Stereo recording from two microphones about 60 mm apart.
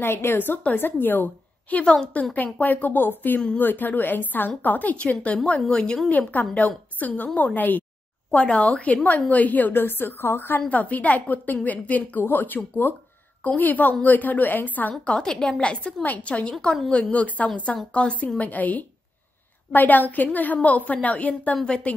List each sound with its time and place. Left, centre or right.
0.0 s a woman's voice: left; by 5.9 s centre
6.0 s a woman's voice: left
10.7 s a woman's voice: left
15.0 s a woman's voice: centre
18.4 s a woman's voice: left